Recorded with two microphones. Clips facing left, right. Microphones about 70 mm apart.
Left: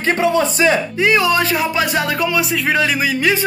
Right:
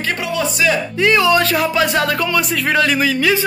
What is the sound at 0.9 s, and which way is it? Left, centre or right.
Speech, centre.